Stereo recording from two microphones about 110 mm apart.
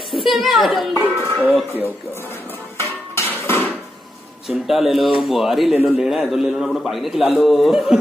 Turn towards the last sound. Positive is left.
turn(degrees=0)  # may be behind; listen again after turning